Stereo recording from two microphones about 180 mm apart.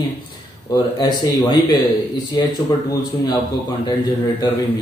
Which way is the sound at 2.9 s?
20° left (ahead or behind).